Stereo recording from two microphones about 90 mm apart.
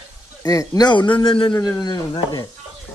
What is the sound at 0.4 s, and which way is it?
A man's voice, 40° left (ahead or behind).